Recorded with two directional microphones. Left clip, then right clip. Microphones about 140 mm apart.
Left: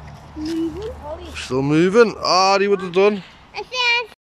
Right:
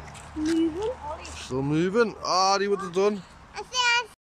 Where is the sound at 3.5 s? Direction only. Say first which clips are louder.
Left 5 dB; 30° left (ahead or behind).